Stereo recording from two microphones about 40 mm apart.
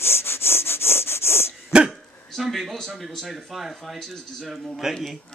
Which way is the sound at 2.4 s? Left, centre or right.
Centre.